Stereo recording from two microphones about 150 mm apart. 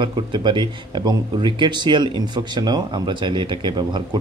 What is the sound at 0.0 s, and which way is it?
Speech, 30° right (ahead or behind).